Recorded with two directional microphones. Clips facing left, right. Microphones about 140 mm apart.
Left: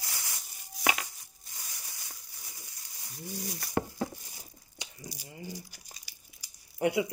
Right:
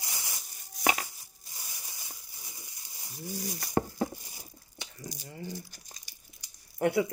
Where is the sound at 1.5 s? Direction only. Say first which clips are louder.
Right 1 dB; 20° right (ahead or behind).